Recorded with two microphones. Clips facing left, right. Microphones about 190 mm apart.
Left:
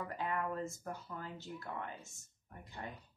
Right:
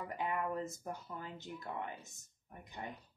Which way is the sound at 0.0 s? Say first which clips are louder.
Right 1 dB; 15° right (ahead or behind).